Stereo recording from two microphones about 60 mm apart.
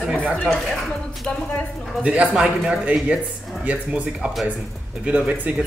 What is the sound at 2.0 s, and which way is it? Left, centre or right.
Speech, centre.